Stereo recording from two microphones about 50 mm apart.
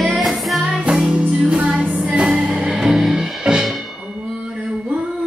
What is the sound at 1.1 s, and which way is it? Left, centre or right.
Music, right.